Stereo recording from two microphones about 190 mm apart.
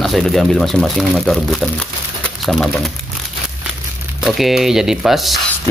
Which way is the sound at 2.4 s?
Centre (ahead or behind).